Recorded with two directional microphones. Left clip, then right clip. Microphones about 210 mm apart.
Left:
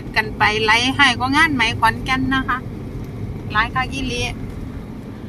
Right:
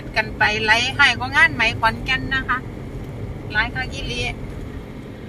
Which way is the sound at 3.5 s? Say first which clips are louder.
Left 3 dB; 15° left (ahead or behind).